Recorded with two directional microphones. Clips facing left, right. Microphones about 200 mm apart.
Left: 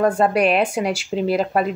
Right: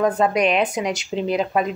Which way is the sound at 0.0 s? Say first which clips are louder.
Left 2 dB; 5° left (ahead or behind).